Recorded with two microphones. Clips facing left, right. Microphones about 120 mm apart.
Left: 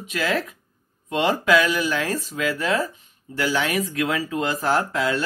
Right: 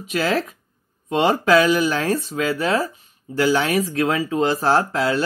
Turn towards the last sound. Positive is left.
turn(degrees=-35)  # may be behind; listen again after turning